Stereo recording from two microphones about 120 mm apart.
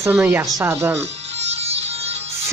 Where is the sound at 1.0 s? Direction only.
60° right (ahead or behind).